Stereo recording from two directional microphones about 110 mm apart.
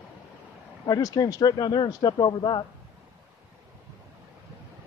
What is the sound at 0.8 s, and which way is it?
Speech, 35° left (ahead or behind).